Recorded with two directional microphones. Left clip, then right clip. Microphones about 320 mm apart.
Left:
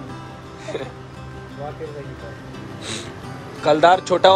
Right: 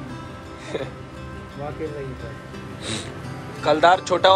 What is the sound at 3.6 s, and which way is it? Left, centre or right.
Speech, centre.